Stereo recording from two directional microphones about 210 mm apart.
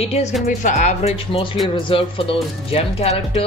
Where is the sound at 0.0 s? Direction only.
30° left (ahead or behind).